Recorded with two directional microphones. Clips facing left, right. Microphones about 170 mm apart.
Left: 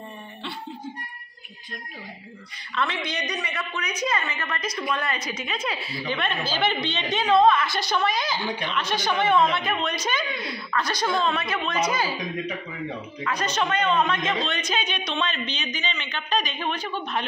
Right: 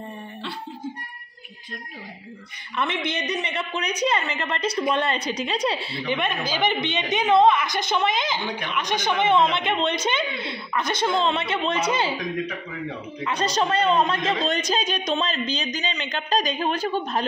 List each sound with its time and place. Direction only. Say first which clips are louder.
2.7 s a woman's voice: right 2 dB; 20° right (ahead or behind)
6.0 s a woman's voice: right 2 dB; 15° right (ahead or behind)
13.2 s a man's voice: right 3 dB; 30° right (ahead or behind)